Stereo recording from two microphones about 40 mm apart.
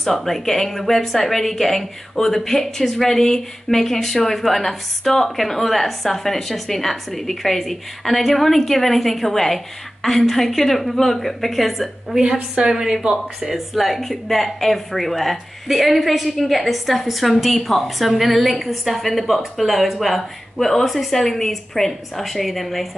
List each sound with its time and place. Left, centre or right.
0.0 s speech: centre
12.6 s a woman's voice: centre
13.7 s speech: centre